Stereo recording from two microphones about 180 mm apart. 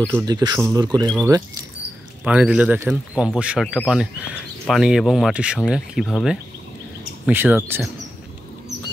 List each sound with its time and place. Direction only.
0.1 s speech: 20° right (ahead or behind)
2.2 s speech: 5° right (ahead or behind)